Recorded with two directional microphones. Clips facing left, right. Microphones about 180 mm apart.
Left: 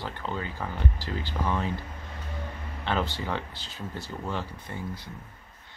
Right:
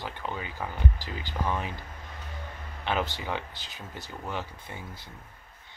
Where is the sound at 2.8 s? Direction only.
15° right (ahead or behind).